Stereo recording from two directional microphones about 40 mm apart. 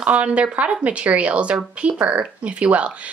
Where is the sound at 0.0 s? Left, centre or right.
Right.